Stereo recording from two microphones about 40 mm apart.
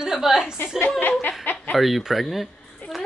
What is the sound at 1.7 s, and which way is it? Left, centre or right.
Speech, centre.